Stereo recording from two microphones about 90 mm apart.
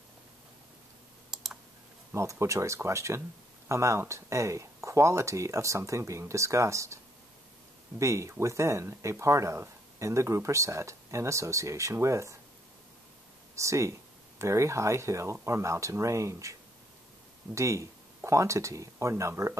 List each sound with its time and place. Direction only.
2.1 s speech: 35° right (ahead or behind)
8.0 s speech: 35° right (ahead or behind)
13.6 s speech: 35° right (ahead or behind)
17.6 s speech: 35° right (ahead or behind)